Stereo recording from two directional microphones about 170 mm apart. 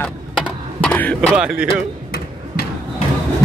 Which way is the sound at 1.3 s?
5° right (ahead or behind).